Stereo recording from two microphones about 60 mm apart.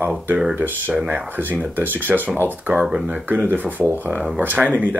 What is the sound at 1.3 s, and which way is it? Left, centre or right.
Speech, right.